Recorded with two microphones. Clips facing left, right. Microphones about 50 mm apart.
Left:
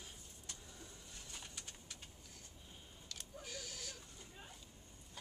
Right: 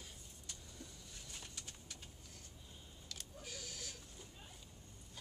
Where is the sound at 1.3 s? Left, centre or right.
Centre.